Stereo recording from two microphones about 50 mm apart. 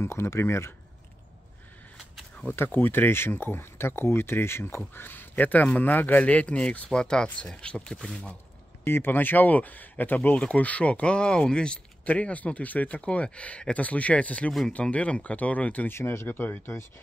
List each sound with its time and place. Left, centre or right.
0.0 s speech: left
2.5 s speech: left; by 8.2 s centre
8.8 s speech: left
10.3 s speech: left
12.0 s speech: left
15.9 s speech: left
16.3 s speech: left